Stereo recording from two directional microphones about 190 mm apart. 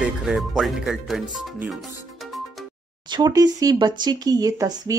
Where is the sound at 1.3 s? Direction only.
Centre (ahead or behind).